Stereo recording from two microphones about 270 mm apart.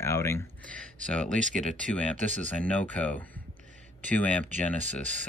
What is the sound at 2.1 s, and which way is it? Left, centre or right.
Speech, right.